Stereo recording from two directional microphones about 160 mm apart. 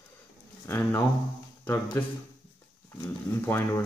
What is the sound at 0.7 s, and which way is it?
Speech, 15° left (ahead or behind).